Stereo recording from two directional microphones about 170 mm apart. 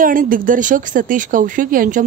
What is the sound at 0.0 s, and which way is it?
Speech, 55° right (ahead or behind).